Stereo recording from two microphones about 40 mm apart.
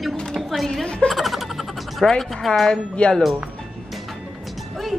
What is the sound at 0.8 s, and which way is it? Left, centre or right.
Speech, left.